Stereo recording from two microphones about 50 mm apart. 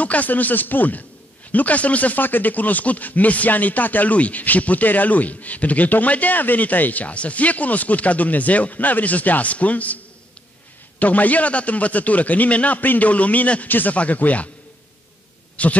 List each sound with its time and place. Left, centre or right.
0.0 s speech: left
11.0 s speech: left
15.6 s speech: left